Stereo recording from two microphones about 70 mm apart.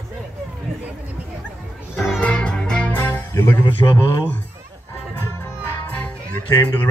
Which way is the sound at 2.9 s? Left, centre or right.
Left.